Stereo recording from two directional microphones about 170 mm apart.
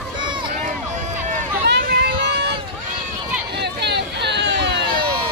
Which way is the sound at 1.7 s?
80° right.